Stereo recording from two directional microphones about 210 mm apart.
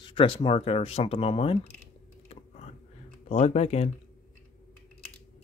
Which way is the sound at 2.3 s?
30° left (ahead or behind).